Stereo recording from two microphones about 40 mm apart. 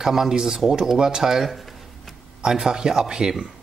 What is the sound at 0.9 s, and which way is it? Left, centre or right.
Speech, centre.